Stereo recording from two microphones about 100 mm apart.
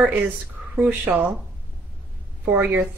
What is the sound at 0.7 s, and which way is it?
Speech, 15° right (ahead or behind).